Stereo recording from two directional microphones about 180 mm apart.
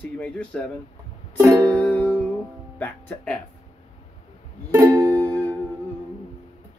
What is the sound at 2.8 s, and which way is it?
Speech, 10° left (ahead or behind).